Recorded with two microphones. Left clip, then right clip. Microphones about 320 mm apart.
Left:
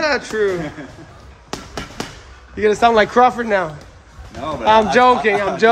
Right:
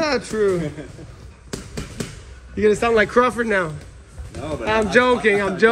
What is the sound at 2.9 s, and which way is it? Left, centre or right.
Speech, centre.